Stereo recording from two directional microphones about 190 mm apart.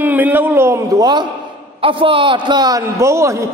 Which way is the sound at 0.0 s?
10° right (ahead or behind).